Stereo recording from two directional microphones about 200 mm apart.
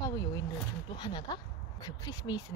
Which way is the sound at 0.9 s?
20° left (ahead or behind).